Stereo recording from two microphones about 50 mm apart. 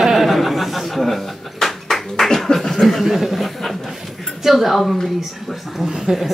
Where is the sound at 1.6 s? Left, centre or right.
Centre.